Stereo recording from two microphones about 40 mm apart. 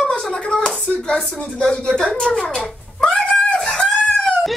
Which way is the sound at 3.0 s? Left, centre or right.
Centre.